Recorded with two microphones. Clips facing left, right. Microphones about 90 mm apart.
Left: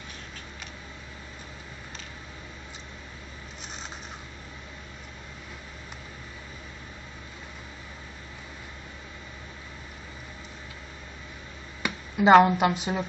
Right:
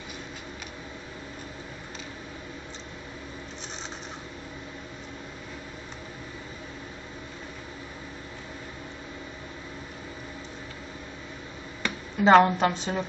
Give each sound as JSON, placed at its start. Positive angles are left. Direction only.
{"t": 11.8, "sound": "speech", "side_deg": 5}